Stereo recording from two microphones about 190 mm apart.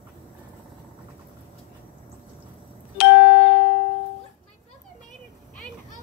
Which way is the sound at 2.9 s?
60° left (ahead or behind).